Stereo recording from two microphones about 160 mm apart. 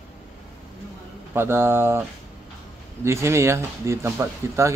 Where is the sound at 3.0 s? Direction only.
15° right (ahead or behind).